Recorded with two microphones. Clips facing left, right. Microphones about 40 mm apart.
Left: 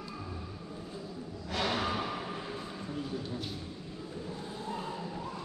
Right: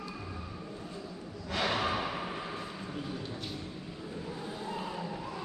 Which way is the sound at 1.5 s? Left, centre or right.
Centre.